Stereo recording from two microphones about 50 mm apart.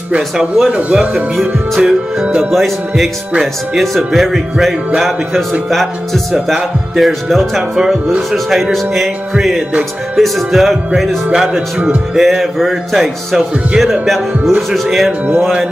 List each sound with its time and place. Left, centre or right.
0.7 s speech: right
0.9 s music: centre
2.5 s speech: centre
10.1 s speech: centre
11.3 s music: centre
12.2 s speech: centre